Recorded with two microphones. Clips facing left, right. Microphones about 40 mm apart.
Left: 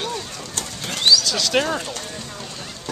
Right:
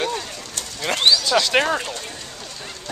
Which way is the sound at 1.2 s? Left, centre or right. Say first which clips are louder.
Right 3 dB; centre.